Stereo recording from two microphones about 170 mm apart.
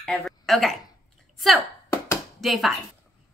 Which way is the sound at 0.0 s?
Centre (ahead or behind).